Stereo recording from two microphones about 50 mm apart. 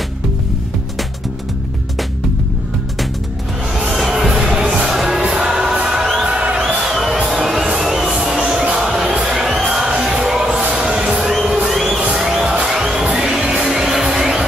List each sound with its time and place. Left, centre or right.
3.7 s music: centre
5.2 s music: centre
6.8 s music: centre
10.6 s a sound: centre
11.4 s crowd: centre
11.7 s crowd: centre
12.2 s music: centre